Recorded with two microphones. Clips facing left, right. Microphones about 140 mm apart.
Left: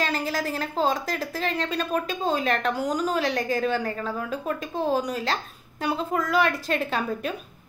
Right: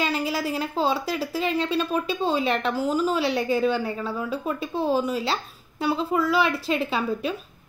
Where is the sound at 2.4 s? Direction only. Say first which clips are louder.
Right 1 dB; 45° left (ahead or behind).